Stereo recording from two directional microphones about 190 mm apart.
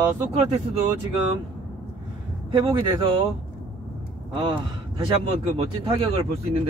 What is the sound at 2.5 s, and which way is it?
Speech, 25° right (ahead or behind).